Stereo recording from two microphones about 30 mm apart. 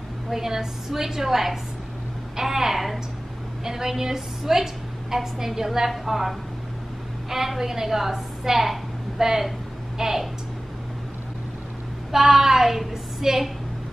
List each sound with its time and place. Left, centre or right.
0.3 s a woman's voice: centre
12.1 s a woman's voice: centre